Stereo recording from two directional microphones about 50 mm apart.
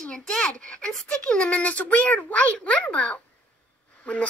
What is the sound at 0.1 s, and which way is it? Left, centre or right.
A child's voice, centre.